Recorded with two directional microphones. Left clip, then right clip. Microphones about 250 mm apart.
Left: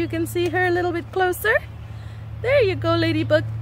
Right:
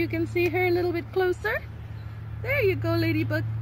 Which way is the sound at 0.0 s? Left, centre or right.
Left.